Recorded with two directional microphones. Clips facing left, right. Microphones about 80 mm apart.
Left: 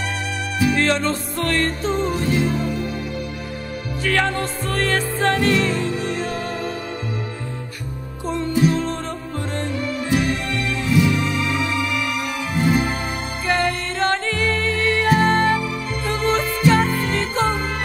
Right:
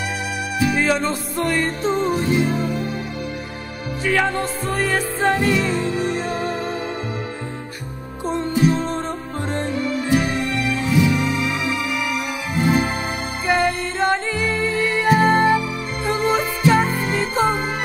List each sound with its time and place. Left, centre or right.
0.7 s music: centre
4.0 s music: centre
8.3 s music: centre
11.9 s music: centre
13.5 s music: centre